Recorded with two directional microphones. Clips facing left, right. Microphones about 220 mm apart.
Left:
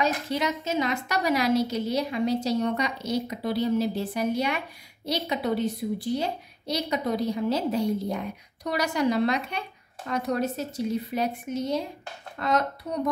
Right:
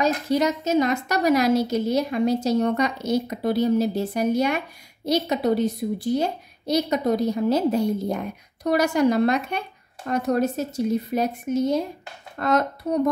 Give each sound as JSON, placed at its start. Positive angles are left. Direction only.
{"t": 0.0, "sound": "a woman's voice", "side_deg": -40}